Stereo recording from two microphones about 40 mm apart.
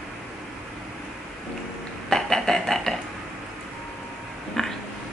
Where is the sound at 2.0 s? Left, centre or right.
Centre.